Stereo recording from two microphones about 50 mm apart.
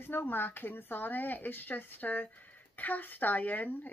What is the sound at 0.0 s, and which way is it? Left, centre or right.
Speech, left.